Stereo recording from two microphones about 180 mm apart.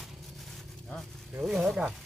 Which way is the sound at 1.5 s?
5° right (ahead or behind).